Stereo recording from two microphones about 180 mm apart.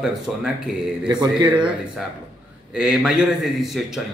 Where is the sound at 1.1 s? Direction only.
25° right (ahead or behind).